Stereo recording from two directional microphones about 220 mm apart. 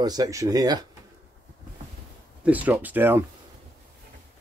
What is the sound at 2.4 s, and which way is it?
Speech, 5° right (ahead or behind).